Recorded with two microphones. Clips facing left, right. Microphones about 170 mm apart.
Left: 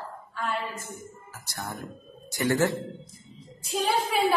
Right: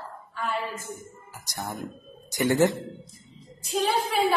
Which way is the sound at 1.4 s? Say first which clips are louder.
Right 3 dB; 15° right (ahead or behind).